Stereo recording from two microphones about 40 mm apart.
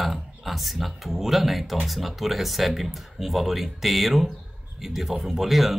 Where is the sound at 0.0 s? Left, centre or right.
Centre.